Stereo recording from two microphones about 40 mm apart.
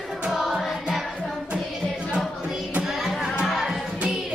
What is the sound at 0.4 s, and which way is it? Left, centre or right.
Music, centre.